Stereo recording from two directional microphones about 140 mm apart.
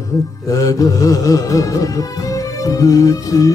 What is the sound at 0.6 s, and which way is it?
Music, 25° left (ahead or behind).